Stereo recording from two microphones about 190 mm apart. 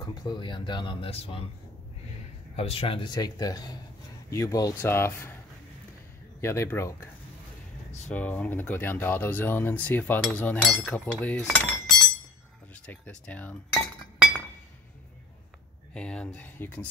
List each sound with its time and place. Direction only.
0.0 s speech: 20° left (ahead or behind)
2.5 s speech: 30° left (ahead or behind); by 5.3 s 10° left (ahead or behind)
6.4 s speech: 15° left (ahead or behind)
8.1 s speech: 5° left (ahead or behind)
12.8 s speech: 10° left (ahead or behind)
15.9 s speech: 5° left (ahead or behind)